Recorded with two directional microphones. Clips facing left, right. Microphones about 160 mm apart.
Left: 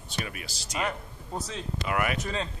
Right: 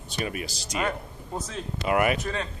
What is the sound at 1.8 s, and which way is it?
Speech, 25° right (ahead or behind).